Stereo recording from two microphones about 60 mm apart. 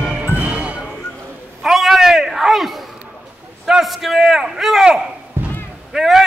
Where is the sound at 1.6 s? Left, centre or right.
Centre.